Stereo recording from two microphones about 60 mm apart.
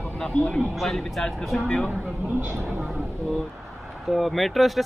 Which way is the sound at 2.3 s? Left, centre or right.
Right.